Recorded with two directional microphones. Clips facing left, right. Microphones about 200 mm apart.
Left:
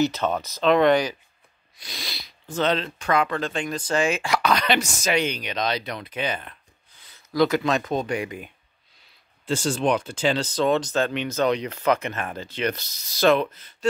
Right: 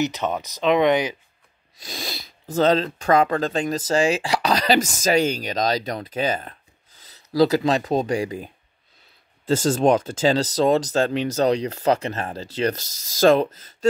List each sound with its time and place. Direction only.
0.0 s speech: 15° right (ahead or behind)
1.9 s speech: 45° right (ahead or behind)
9.5 s speech: 45° right (ahead or behind)